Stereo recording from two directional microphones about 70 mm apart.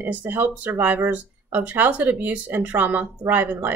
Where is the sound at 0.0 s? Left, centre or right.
Right.